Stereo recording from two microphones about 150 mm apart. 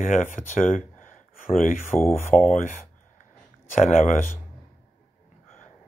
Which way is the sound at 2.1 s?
55° left (ahead or behind).